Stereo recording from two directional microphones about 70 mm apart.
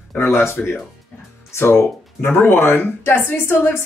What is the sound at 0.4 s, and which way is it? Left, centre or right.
Speech, left.